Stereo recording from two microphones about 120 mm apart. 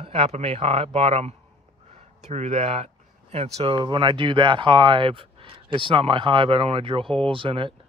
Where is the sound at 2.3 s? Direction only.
65° right (ahead or behind); by 7.1 s 50° right (ahead or behind).